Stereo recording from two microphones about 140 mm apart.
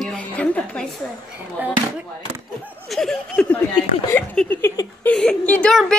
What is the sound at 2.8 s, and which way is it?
Speech, 5° left (ahead or behind).